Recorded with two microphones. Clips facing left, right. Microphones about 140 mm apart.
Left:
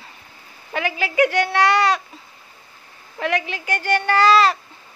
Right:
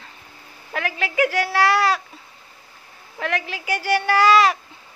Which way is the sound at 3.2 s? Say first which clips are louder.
Left 3 dB; centre (ahead or behind).